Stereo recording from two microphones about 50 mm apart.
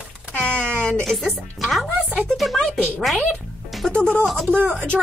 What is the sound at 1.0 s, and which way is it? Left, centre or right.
Speech, centre.